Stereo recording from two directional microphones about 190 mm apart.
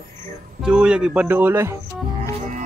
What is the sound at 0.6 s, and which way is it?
Speech, 5° right (ahead or behind).